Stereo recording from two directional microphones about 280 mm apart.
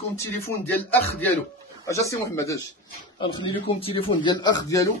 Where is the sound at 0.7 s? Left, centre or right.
Centre.